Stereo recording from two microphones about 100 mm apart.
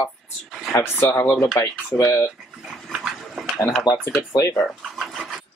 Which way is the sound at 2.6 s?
5° right (ahead or behind).